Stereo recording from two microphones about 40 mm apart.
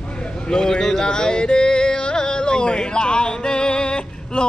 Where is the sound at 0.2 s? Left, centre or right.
Centre.